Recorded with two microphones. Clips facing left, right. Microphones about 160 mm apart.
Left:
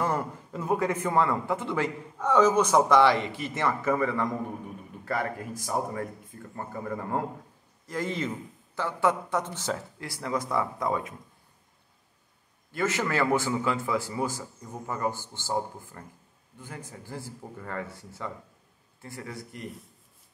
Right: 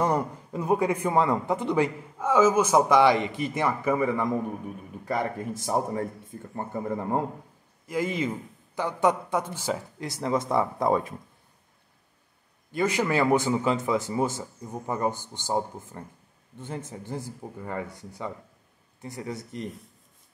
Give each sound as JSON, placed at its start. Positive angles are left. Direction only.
{"t": 0.0, "sound": "a man's voice", "side_deg": -15}
{"t": 7.8, "sound": "a man's voice", "side_deg": -10}
{"t": 12.7, "sound": "a man's voice", "side_deg": -15}